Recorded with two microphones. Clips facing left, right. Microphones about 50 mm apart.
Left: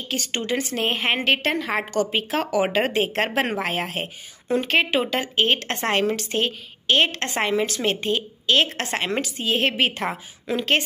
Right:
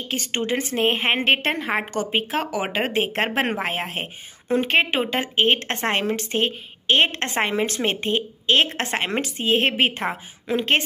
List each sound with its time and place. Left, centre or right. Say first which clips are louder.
0.1 s a woman's voice: right 1 dB; right
2.9 s a woman's voice: even; right
5.8 s a woman's voice: left 1 dB; centre